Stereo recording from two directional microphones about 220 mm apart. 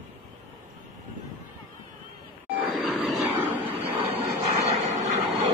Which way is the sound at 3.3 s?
10° right (ahead or behind).